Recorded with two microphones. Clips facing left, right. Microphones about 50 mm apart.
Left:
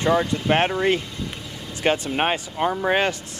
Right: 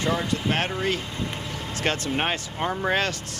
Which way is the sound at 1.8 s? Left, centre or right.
Centre.